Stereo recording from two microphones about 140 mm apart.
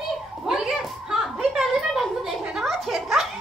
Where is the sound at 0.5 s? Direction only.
5° right (ahead or behind).